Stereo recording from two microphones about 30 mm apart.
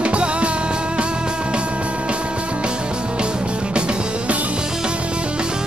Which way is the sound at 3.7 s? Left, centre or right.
Right.